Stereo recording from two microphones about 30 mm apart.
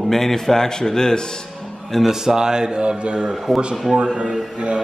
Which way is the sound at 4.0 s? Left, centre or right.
Right.